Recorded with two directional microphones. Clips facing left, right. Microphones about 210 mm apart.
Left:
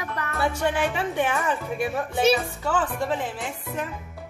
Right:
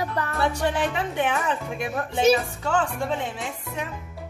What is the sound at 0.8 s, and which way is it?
Speech, 5° left (ahead or behind).